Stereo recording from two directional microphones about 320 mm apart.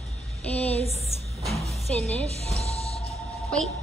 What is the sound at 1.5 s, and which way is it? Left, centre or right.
Music, centre.